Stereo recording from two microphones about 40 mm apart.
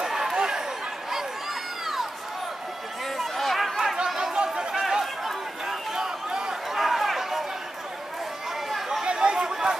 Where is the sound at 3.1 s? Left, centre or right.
Centre.